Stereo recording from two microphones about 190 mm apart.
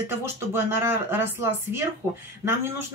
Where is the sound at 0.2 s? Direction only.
15° right (ahead or behind).